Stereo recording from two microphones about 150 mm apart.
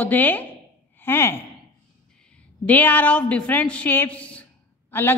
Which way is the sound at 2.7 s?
10° left (ahead or behind).